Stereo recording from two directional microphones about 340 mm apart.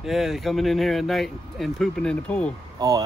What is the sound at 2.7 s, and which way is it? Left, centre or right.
Speech, centre.